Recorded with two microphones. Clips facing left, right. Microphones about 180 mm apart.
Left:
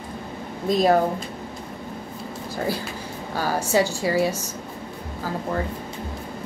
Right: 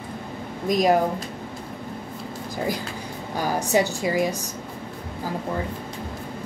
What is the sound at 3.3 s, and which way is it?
A woman's voice, 15° right (ahead or behind).